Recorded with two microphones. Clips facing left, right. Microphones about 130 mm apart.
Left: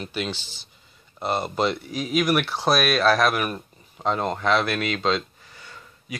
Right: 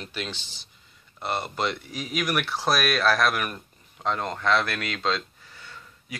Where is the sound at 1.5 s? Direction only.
30° left (ahead or behind).